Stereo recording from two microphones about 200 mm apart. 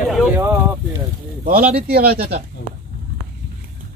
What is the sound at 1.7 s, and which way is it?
Speech, 50° right (ahead or behind).